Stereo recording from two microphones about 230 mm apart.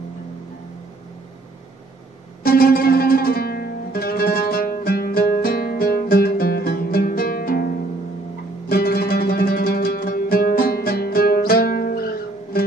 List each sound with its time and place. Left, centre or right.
2.4 s music: left